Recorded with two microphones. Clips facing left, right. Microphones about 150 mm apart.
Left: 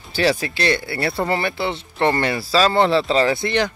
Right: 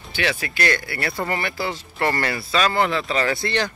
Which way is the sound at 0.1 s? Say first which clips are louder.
Left 6 dB; 35° left (ahead or behind).